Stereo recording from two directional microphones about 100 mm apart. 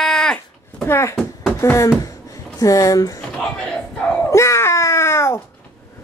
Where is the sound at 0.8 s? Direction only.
25° left (ahead or behind).